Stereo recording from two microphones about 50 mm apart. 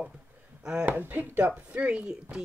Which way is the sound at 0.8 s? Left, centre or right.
Right.